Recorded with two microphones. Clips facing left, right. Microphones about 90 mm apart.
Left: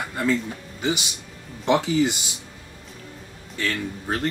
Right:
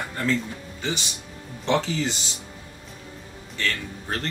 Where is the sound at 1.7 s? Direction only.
15° left (ahead or behind).